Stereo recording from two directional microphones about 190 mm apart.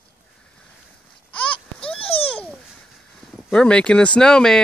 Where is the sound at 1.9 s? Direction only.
30° left (ahead or behind).